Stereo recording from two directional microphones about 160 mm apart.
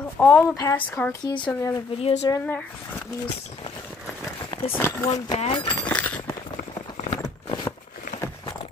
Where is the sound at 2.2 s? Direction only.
25° left (ahead or behind).